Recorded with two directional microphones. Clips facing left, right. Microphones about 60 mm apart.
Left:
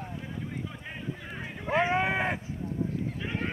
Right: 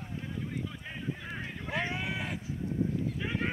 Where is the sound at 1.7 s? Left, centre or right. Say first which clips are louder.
Left 9 dB; left.